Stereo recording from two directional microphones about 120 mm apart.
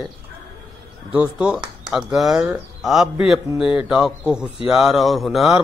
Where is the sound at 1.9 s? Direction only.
5° right (ahead or behind).